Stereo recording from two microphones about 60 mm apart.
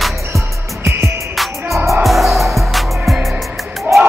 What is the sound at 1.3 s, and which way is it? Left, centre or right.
Music, centre.